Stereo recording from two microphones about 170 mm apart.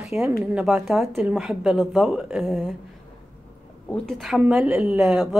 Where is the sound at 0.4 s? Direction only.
5° right (ahead or behind).